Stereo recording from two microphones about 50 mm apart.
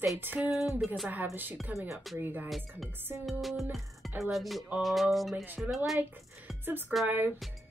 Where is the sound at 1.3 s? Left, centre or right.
Right.